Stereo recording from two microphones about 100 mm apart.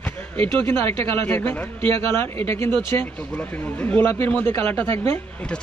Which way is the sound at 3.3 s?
15° left (ahead or behind).